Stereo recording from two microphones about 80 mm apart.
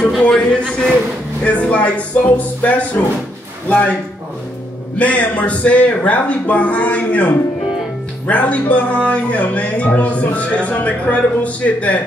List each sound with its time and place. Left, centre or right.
0.2 s speech: centre
4.9 s speech: centre